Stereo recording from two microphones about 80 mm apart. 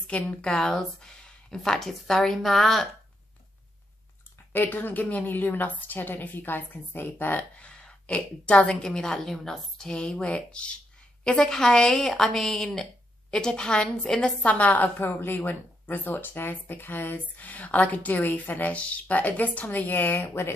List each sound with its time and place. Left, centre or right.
0.0 s speech: centre
4.5 s a woman's voice: left